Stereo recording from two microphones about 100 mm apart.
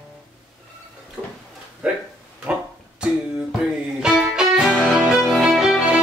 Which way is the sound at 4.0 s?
5° right (ahead or behind).